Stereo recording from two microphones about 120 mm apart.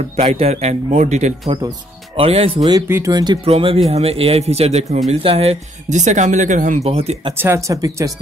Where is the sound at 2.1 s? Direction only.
55° right (ahead or behind).